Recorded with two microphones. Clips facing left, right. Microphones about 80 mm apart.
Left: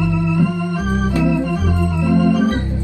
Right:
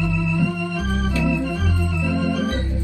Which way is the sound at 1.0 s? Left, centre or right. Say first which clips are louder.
Left 5 dB; left.